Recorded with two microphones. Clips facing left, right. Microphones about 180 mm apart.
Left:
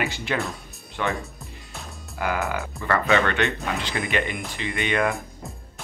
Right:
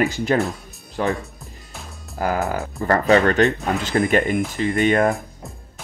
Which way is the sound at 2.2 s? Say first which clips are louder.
Right 4 dB; 40° right (ahead or behind).